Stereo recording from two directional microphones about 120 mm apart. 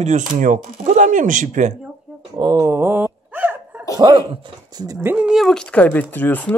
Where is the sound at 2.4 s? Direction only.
30° right (ahead or behind); by 3.8 s 15° right (ahead or behind).